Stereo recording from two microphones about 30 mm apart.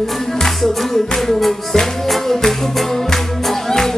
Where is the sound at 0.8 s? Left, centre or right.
Centre.